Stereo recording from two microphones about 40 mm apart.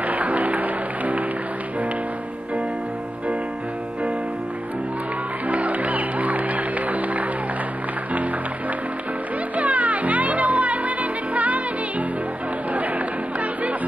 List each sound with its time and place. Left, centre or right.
0.0 s music: right
5.5 s music: right
9.6 s music: right